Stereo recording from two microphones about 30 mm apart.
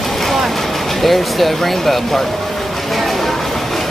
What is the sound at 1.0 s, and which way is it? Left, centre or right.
Speech, centre.